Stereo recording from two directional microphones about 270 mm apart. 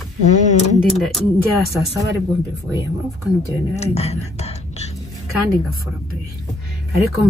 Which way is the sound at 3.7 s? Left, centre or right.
Left.